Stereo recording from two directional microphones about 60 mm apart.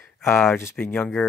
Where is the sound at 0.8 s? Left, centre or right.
Left.